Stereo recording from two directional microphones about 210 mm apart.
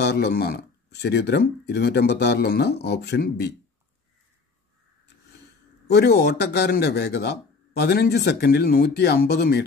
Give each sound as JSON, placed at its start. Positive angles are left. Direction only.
{"t": 0.0, "sound": "a man's voice", "side_deg": 50}
{"t": 5.9, "sound": "a man's voice", "side_deg": 50}